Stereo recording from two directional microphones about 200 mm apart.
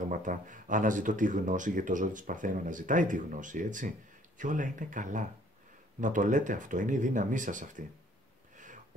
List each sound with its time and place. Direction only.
0.1 s speech: 40° right (ahead or behind)